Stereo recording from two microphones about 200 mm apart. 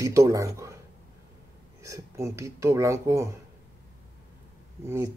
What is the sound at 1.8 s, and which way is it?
Speech, 15° right (ahead or behind).